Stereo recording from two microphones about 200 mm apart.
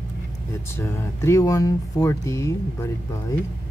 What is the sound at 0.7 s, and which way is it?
Speech, 15° left (ahead or behind).